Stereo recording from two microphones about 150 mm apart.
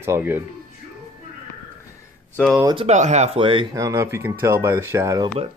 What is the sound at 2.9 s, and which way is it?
Speech, 50° right (ahead or behind).